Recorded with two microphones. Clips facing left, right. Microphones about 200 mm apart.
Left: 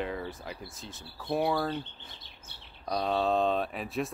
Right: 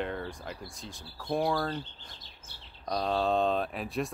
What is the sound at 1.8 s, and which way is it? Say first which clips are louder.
Speech: left 1 dB; 60° left (ahead or behind).